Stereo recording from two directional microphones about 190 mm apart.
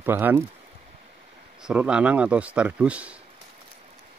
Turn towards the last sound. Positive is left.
turn(degrees=-5)  # may be behind; listen again after turning